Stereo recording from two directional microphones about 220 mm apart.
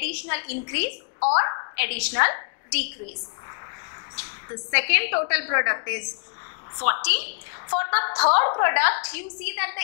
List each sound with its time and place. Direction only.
0.0 s a woman's voice: 10° left (ahead or behind)
4.6 s a woman's voice: 15° left (ahead or behind)